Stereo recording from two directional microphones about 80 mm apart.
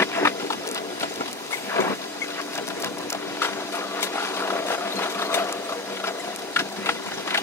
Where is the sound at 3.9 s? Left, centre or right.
Left.